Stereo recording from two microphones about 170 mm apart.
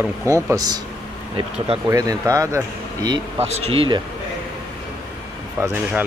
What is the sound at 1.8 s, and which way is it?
Speech, 20° right (ahead or behind).